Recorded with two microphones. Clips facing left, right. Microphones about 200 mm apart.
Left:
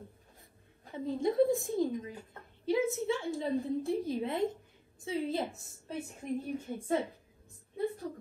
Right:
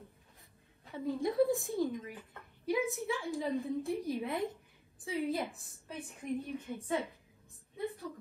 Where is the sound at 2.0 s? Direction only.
30° left (ahead or behind).